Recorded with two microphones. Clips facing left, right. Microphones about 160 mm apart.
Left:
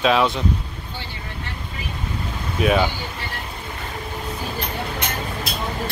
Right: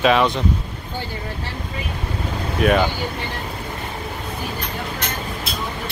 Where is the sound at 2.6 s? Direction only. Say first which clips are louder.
Right 2 dB; centre (ahead or behind).